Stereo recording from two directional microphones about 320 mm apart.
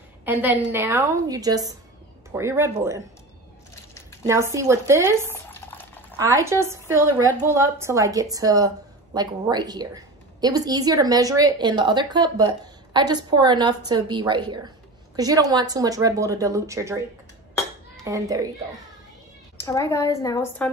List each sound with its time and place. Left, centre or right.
0.2 s a woman's voice: centre
4.3 s a woman's voice: centre
5.3 s stir: centre
6.1 s a woman's voice: centre
18.0 s a woman's voice: centre
19.5 s a woman's voice: centre